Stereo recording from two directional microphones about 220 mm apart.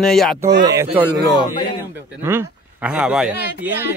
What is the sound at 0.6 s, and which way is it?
Speech, 15° right (ahead or behind).